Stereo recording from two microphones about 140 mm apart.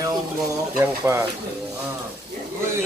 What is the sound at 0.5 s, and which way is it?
Speech, 20° right (ahead or behind).